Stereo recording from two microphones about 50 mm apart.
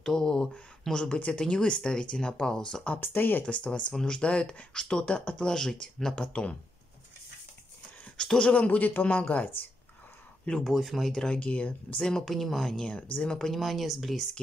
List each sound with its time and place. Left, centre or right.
0.0 s speech: centre
3.0 s a man's voice: left
3.4 s speech: left
5.5 s speech: centre
6.1 s speech: left
8.2 s speech: centre
8.5 s a man's voice: left
10.7 s speech: centre
11.1 s speech: centre
11.3 s speech: left
12.1 s speech: centre
13.1 s speech: left
13.4 s speech: centre